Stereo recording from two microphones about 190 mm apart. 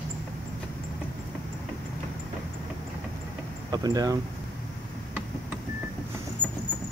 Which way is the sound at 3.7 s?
20° right (ahead or behind).